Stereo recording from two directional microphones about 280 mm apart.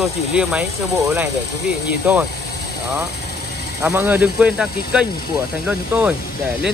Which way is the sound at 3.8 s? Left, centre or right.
Centre.